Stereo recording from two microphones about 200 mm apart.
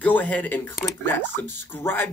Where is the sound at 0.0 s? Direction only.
10° left (ahead or behind).